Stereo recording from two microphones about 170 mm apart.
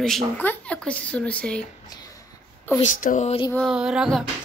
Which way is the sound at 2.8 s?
50° left (ahead or behind).